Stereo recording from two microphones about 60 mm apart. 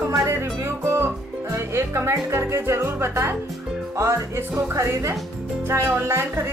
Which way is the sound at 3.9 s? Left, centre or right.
Right.